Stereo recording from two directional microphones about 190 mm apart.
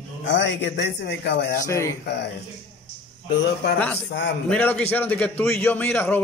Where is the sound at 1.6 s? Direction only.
15° left (ahead or behind).